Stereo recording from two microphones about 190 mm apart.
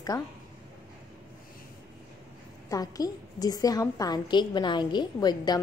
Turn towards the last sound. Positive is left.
turn(degrees=20)  # may be behind; listen again after turning